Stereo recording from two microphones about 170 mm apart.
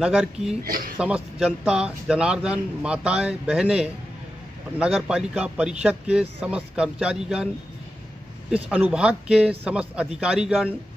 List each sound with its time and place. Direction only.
0.0 s speech: 5° right (ahead or behind)
0.7 s speech: 60° right (ahead or behind)
0.9 s speech: 5° right (ahead or behind)
8.6 s speech: 5° right (ahead or behind)